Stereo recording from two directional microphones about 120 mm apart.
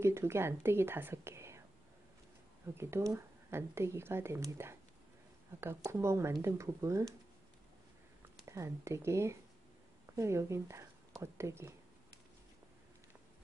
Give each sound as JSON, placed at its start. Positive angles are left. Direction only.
{"t": 0.0, "sound": "speech", "side_deg": -20}
{"t": 2.7, "sound": "speech", "side_deg": -20}
{"t": 8.5, "sound": "speech", "side_deg": -25}